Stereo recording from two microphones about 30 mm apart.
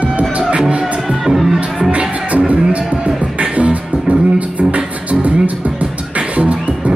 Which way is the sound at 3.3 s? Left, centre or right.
Right.